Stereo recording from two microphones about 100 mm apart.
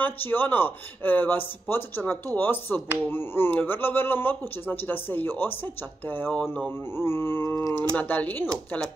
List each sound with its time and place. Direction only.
0.0 s speech: 20° left (ahead or behind)
7.9 s speech: 15° left (ahead or behind)